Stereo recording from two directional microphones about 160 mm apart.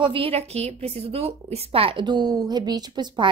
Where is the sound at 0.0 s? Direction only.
35° right (ahead or behind).